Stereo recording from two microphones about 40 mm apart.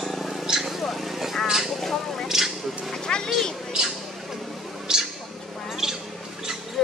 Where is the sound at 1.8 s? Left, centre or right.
Centre.